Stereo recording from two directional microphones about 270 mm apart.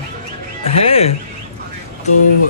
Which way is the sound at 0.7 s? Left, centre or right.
Left.